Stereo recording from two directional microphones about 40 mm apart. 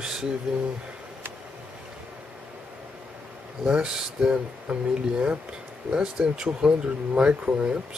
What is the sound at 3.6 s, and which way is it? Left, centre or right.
Speech, centre.